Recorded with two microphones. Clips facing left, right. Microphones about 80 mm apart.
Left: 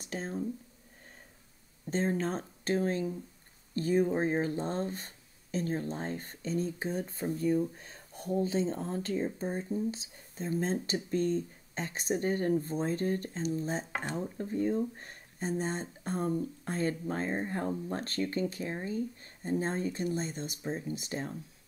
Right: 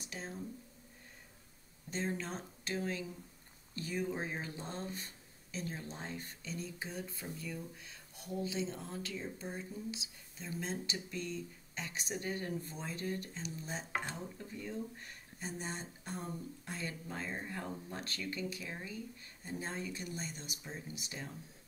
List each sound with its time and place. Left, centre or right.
0.0 s speech: left
1.9 s speech: left